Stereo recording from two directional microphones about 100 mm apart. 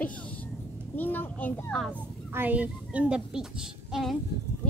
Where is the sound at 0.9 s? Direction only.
20° left (ahead or behind).